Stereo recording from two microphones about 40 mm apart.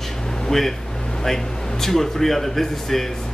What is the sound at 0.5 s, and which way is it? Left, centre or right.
Speech, centre.